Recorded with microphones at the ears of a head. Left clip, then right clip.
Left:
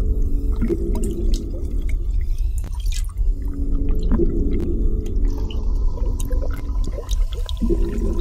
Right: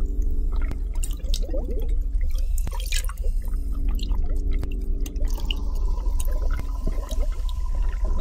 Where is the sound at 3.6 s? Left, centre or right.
Left.